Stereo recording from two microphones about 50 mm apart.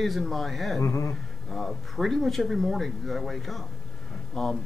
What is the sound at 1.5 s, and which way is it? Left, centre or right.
Speech, centre.